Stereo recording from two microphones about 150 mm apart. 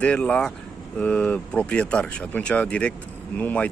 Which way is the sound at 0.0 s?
5° left (ahead or behind).